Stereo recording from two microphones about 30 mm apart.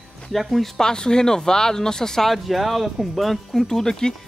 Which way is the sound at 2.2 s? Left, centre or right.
Centre.